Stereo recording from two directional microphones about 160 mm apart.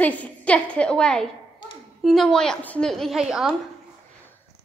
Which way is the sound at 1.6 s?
30° left (ahead or behind).